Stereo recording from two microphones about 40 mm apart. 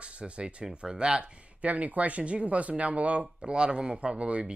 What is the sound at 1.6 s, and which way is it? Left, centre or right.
Speech, right.